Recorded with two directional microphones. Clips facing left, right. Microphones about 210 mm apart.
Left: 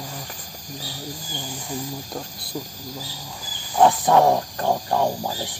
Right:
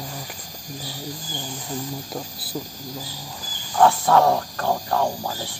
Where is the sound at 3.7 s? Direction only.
15° left (ahead or behind).